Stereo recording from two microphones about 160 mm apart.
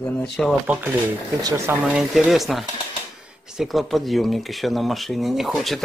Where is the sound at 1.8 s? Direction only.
5° right (ahead or behind).